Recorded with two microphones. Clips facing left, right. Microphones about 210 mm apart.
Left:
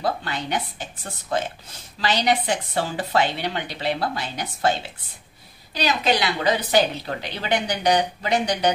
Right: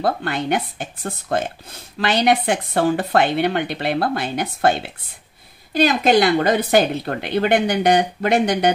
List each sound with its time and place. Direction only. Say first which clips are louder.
0.0 s speech: right 5 dB; 55° right (ahead or behind)